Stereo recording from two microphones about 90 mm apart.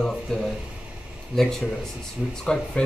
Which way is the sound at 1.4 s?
5° left (ahead or behind).